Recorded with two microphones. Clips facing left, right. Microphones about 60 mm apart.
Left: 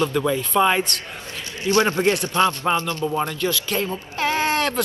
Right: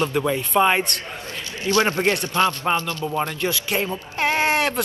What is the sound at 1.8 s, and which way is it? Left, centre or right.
Speech, right.